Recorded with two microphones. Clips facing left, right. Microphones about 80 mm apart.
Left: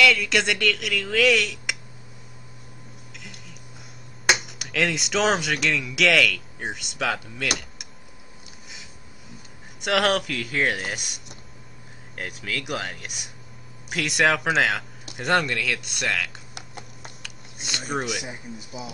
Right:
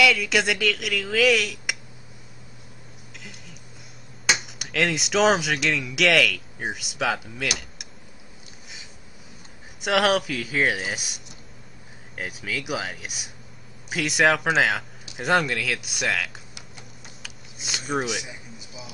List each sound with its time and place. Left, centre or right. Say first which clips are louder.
0.0 s speech: even; centre
3.2 s a sound: right 1 dB; centre
4.4 s speech: even; centre
9.8 s speech: right 1 dB; centre
16.5 s typing: left 4 dB; left
17.2 s a sound: left 1 dB; centre
18.2 s speech: left 5 dB; left